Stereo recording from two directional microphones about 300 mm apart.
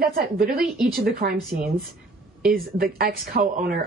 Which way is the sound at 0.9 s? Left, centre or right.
Right.